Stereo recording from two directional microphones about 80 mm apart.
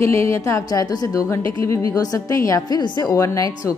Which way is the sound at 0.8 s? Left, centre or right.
Left.